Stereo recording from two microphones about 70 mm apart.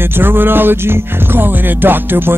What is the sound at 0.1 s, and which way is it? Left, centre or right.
Music, right.